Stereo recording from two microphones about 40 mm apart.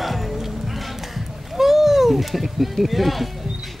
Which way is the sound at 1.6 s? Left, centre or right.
Centre.